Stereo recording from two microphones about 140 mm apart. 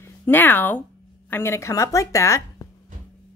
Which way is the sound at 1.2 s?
15° left (ahead or behind).